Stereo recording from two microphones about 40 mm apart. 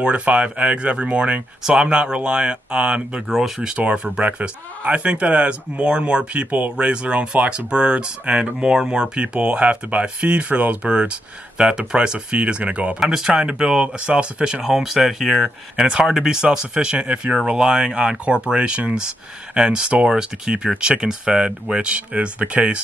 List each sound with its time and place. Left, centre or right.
0.0 s speech: right
1.6 s speech: centre
3.3 s speech: centre
3.7 s speech: right
6.5 s speech: right
6.9 s speech: right
13.0 s speech: centre
13.3 s speech: right
14.6 s speech: centre; by 22.8 s right